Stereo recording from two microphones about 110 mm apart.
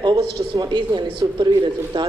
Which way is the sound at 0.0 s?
40° right (ahead or behind).